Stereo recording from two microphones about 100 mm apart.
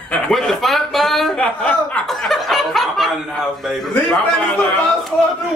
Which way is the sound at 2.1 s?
Centre (ahead or behind).